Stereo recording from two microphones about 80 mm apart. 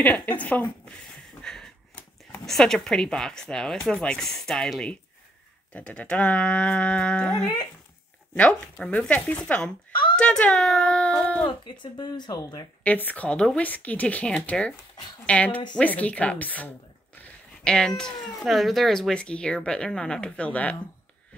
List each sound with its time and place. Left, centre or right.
0.0 s speech: left
8.4 s speech: centre
11.6 s speech: left
12.8 s speech: centre
17.6 s speech: centre